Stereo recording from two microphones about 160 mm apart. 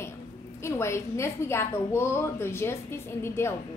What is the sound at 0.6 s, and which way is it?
A woman's voice, 15° left (ahead or behind).